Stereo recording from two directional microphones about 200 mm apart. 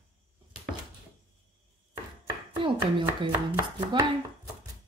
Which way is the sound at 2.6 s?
25° right (ahead or behind).